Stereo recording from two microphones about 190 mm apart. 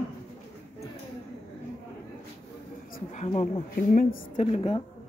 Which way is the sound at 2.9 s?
40° left (ahead or behind).